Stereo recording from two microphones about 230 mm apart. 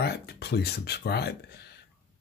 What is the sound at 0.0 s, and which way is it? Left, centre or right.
Speech, left.